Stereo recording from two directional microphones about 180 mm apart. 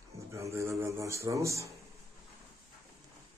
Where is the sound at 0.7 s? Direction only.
15° right (ahead or behind).